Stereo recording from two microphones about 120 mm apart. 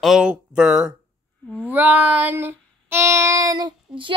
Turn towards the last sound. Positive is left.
turn(degrees=-40)  # may be behind; listen again after turning